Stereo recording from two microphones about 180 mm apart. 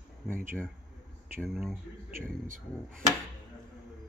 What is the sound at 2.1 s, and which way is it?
Speech, 50° right (ahead or behind).